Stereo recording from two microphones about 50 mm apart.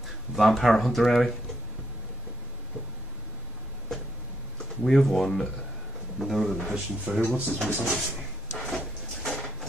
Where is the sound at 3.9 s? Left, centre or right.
Centre.